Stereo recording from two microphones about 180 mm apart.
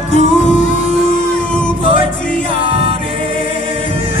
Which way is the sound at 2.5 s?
30° right (ahead or behind).